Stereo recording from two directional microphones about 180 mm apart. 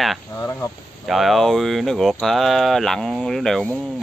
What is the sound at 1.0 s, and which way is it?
Speech, centre (ahead or behind).